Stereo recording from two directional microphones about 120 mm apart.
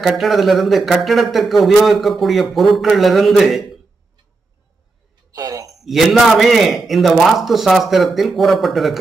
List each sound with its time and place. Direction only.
0.0 s a man's voice: centre (ahead or behind)
5.3 s a sound: 30° right (ahead or behind)
5.9 s a man's voice: centre (ahead or behind)